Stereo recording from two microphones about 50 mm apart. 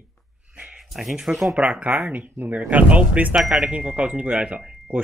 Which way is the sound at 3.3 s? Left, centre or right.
Centre.